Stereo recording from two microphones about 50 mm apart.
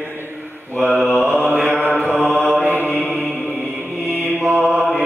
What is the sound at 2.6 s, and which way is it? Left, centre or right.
Mantra, right.